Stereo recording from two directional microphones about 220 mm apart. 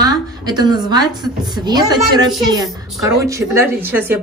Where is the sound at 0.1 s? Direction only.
20° right (ahead or behind).